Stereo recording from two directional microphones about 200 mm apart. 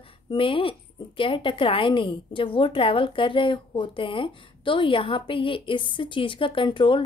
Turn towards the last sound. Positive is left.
turn(degrees=25)  # may be behind; listen again after turning